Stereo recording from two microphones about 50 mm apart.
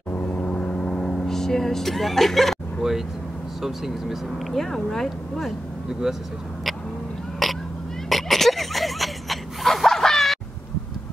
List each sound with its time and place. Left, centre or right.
0.1 s vehicle: left
0.4 s vehicle: centre
3.6 s speech: centre
4.6 s speech: centre
5.9 s speech: centre
7.4 s a sound: centre